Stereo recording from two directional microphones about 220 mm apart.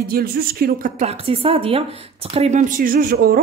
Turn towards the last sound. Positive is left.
turn(degrees=-40)  # may be behind; listen again after turning